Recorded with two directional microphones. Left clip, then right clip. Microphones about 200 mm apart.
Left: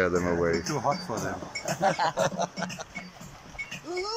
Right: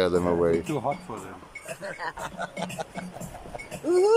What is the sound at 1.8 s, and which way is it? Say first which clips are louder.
Speech: left 10 dB; 45° left (ahead or behind).